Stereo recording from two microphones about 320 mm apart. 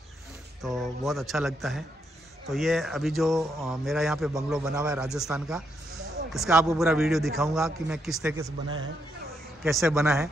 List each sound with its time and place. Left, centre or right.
0.7 s a man's voice: centre
9.6 s a man's voice: centre